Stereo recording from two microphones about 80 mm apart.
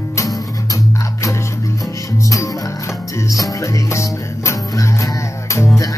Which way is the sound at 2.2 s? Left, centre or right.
Left.